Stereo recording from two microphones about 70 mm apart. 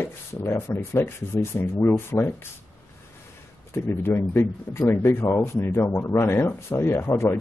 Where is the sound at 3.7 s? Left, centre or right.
Left.